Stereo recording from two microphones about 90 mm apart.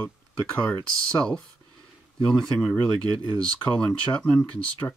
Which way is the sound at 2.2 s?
5° left (ahead or behind).